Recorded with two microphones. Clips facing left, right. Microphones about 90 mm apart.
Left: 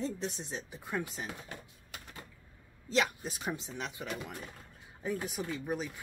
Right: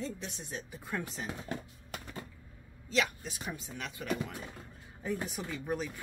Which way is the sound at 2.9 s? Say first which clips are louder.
Left 1 dB; 35° left (ahead or behind).